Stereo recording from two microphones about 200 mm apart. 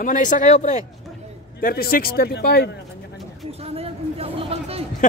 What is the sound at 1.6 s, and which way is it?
A man's voice, 45° left (ahead or behind).